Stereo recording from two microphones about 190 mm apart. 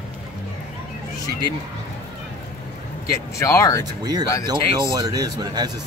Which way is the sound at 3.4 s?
15° left (ahead or behind).